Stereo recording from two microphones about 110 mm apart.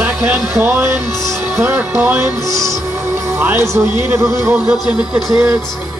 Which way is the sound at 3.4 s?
15° right (ahead or behind).